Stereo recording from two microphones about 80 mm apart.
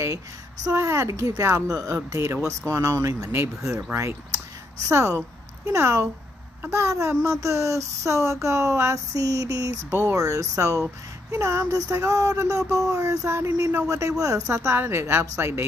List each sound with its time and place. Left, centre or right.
0.7 s speech: right
2.0 s speech: right